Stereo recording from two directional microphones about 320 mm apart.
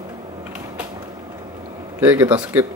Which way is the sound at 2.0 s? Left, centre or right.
Centre.